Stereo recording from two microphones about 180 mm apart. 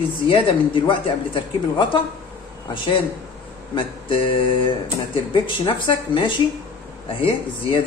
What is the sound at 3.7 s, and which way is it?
Speech, 30° left (ahead or behind).